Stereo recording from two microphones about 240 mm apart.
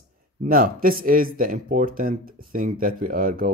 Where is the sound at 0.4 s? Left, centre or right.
Right.